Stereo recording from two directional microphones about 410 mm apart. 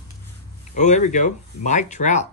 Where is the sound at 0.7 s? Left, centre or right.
Centre.